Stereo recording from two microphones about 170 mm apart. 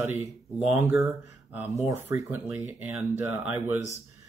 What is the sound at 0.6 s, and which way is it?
Speech, 10° right (ahead or behind).